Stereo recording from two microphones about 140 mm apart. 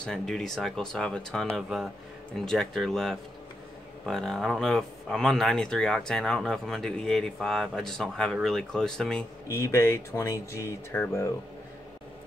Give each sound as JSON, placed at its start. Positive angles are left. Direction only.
{"t": 0.0, "sound": "speech", "side_deg": 5}
{"t": 9.5, "sound": "speech", "side_deg": 20}